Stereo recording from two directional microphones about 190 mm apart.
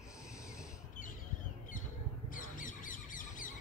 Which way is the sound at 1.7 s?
45° left (ahead or behind).